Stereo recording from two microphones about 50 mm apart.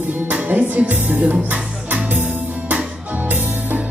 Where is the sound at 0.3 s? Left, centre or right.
Right.